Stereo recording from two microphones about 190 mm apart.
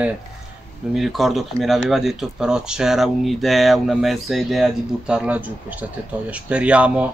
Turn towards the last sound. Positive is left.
turn(degrees=-5)  # may be behind; listen again after turning